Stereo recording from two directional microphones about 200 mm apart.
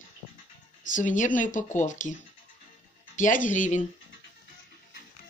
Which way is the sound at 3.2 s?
40° left (ahead or behind).